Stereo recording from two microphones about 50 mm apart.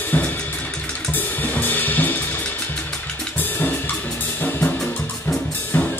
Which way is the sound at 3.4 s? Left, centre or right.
Left.